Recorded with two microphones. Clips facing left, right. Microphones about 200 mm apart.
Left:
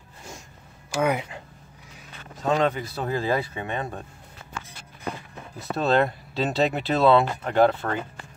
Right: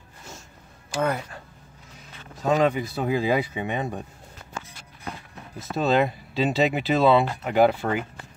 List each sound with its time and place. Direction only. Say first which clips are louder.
1.0 s speech: left 2 dB; 10° left (ahead or behind)
2.4 s speech: right 2 dB; 5° right (ahead or behind)
5.6 s speech: even; centre (ahead or behind)